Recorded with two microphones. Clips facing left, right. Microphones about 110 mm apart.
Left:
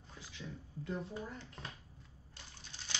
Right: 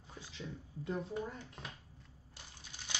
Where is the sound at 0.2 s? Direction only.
25° right (ahead or behind).